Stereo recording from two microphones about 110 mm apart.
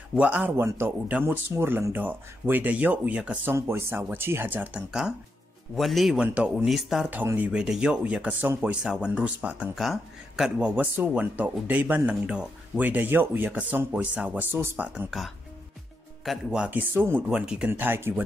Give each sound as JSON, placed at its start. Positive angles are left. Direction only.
{"t": 0.1, "sound": "speech", "side_deg": -10}
{"t": 3.5, "sound": "speech", "side_deg": -25}
{"t": 5.8, "sound": "a man's voice", "side_deg": 0}
{"t": 9.8, "sound": "speech", "side_deg": 0}
{"t": 15.0, "sound": "a man's voice", "side_deg": 0}
{"t": 16.9, "sound": "speech", "side_deg": -20}
{"t": 17.3, "sound": "speech", "side_deg": -10}
{"t": 17.6, "sound": "speech", "side_deg": -20}